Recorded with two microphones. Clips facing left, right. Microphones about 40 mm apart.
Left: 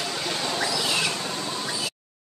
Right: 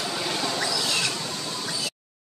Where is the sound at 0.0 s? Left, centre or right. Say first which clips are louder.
Right 1 dB; centre.